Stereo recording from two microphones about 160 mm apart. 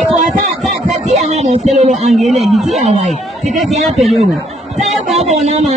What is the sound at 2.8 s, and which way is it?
Speech, 45° right (ahead or behind).